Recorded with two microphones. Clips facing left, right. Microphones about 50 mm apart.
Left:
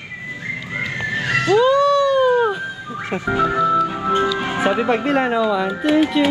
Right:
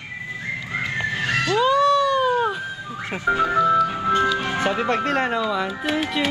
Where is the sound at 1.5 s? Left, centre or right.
Centre.